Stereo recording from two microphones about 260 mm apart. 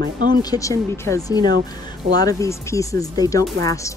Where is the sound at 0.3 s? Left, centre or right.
Centre.